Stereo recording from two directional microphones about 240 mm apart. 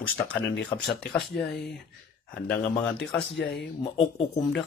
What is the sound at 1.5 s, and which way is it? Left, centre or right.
Speech, left.